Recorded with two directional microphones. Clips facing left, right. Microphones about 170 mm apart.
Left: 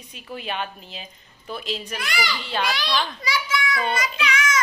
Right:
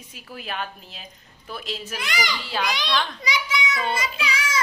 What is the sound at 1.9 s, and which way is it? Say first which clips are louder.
Speech: right 2 dB; 20° right (ahead or behind).